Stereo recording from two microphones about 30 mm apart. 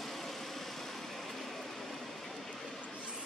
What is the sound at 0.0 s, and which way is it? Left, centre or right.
Vehicle, centre.